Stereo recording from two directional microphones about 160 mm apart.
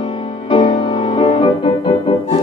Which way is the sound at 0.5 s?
35° left (ahead or behind).